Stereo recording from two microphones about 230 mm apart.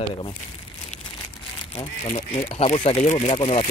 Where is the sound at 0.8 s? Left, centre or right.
Left.